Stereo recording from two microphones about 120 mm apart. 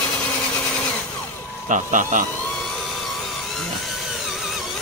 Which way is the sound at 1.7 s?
90° right.